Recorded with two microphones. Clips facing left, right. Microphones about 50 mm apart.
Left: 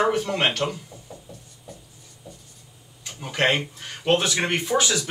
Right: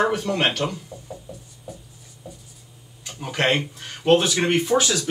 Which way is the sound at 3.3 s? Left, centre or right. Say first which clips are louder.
Right 1 dB; centre.